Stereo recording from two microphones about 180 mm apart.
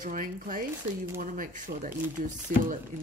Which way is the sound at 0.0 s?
45° right (ahead or behind).